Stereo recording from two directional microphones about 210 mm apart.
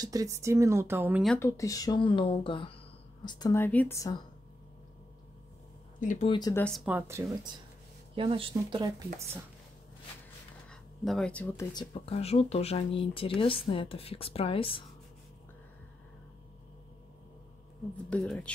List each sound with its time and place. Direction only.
0.0 s speech: 15° right (ahead or behind)
1.4 s a woman's voice: 15° left (ahead or behind)
5.9 s speech: 40° left (ahead or behind)
6.2 s a woman's voice: 20° left (ahead or behind)
6.5 s speech: 5° left (ahead or behind)
8.1 s speech: 25° right (ahead or behind)
10.7 s speech: 5° left (ahead or behind)
11.9 s a woman's voice: 30° left (ahead or behind)
17.9 s speech: 5° left (ahead or behind)